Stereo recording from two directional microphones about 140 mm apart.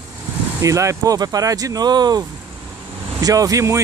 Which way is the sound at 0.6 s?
20° right (ahead or behind).